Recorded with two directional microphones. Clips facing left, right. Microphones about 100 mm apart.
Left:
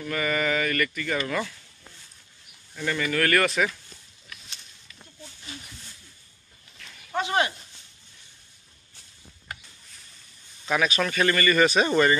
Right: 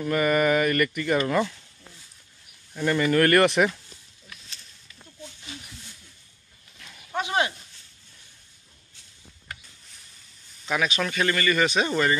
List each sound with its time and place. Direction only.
0.0 s speech: 20° right (ahead or behind)
2.7 s speech: 15° right (ahead or behind)
7.2 s a sound: 15° right (ahead or behind)
10.7 s speech: 5° right (ahead or behind)